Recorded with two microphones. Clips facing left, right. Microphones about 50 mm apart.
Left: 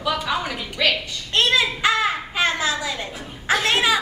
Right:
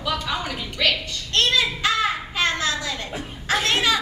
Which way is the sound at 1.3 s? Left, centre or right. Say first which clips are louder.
Left 2 dB; centre.